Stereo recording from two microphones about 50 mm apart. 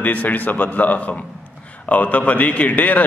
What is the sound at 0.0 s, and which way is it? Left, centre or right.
A man's voice, left.